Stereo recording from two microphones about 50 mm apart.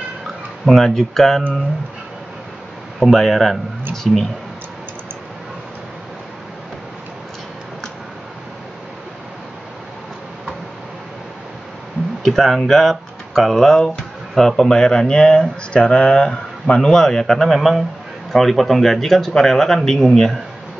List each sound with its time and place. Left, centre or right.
0.7 s speech: centre
3.0 s speech: centre
12.2 s speech: centre
17.6 s speech: centre